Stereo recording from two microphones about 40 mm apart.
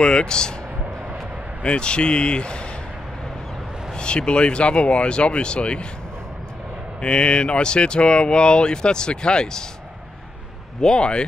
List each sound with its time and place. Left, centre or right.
0.0 s speech: left
1.6 s speech: left
3.9 s speech: left
7.0 s speech: left
10.8 s speech: left